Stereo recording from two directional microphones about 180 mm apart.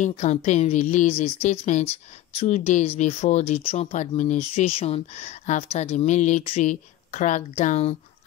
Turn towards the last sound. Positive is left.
turn(degrees=40)  # may be behind; listen again after turning